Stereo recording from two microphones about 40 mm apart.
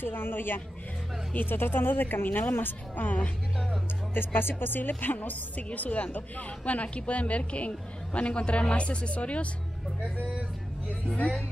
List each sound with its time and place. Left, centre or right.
0.0 s a woman's voice: left
4.1 s a woman's voice: left
5.7 s a woman's voice: left